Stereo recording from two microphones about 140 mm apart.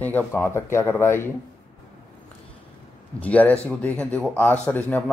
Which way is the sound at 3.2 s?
10° left (ahead or behind).